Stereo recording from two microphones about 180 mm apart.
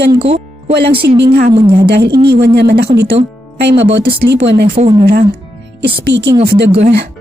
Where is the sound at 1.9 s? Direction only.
65° right (ahead or behind).